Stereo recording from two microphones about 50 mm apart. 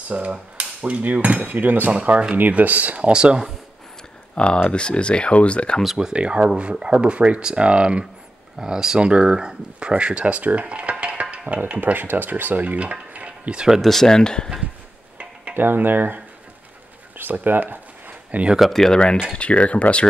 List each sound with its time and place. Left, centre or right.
0.1 s speech: right
3.1 s speech: centre
4.6 s speech: left
5.9 s speech: centre
11.8 s speech: right
13.7 s speech: centre
15.5 s speech: right
17.2 s a sound: right
18.6 s speech: centre
19.3 s speech: left